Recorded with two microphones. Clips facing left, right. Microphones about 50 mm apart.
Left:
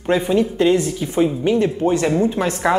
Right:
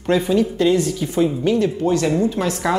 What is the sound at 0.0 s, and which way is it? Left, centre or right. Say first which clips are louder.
A woman's voice: even; centre.